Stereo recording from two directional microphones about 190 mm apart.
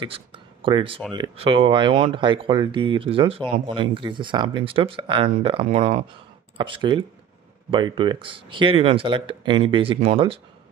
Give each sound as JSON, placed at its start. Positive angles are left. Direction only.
{"t": 0.0, "sound": "speech", "side_deg": -25}